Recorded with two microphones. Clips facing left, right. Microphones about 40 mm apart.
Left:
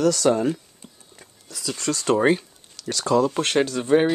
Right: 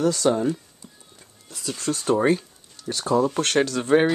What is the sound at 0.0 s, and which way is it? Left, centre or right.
Speech, left.